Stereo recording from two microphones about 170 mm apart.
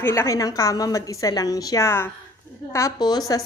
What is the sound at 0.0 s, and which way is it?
A woman's voice, 15° left (ahead or behind).